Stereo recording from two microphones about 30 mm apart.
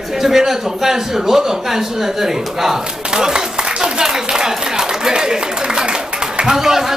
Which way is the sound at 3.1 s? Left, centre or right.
Right.